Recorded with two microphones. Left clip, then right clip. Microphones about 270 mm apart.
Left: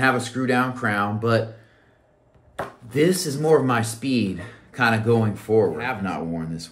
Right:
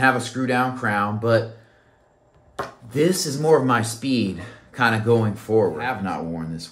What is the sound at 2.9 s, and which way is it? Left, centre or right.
Speech, centre.